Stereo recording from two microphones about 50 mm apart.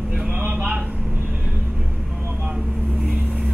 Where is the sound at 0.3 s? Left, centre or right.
Right.